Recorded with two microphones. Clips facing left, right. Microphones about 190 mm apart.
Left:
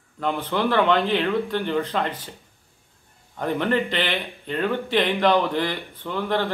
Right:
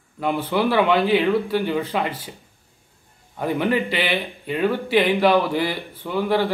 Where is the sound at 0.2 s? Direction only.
10° right (ahead or behind).